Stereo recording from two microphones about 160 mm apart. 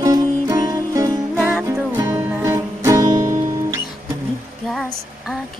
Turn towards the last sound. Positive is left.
turn(degrees=-20)  # may be behind; listen again after turning